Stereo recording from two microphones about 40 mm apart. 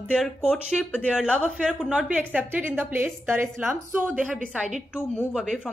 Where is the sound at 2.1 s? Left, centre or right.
Right.